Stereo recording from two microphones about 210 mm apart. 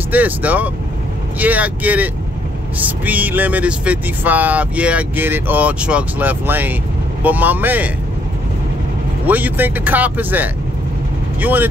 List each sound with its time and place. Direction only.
0.1 s speech: 5° right (ahead or behind)
9.2 s speech: 10° right (ahead or behind)